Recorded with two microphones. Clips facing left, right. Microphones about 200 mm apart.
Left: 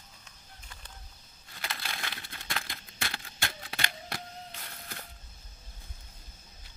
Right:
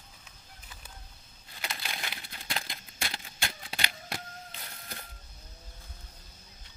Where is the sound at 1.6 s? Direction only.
20° right (ahead or behind).